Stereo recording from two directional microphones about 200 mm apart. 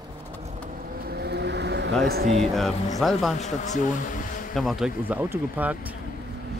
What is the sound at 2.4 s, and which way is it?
Speech, centre (ahead or behind).